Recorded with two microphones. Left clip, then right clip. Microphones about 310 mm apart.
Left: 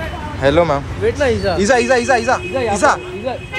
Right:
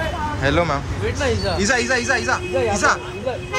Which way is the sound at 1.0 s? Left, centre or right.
Centre.